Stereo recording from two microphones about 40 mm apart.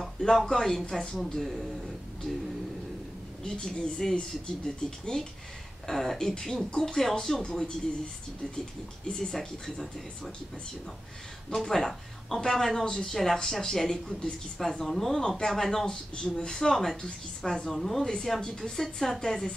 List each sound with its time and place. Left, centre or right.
0.0 s speech: centre
1.3 s speech: centre
3.4 s speech: centre
9.0 s speech: centre
11.5 s speech: centre
17.7 s speech: centre
18.0 s speech: centre